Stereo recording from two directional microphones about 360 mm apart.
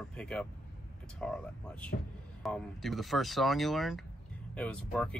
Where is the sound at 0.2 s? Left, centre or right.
Centre.